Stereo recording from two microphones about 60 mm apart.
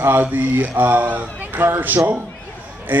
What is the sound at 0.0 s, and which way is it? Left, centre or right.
Speech, right.